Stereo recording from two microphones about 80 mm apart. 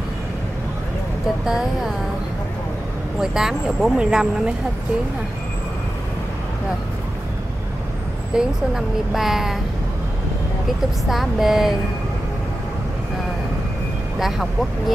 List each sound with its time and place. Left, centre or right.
1.4 s speech: centre
3.2 s speech: centre
8.4 s speech: centre
11.1 s speech: centre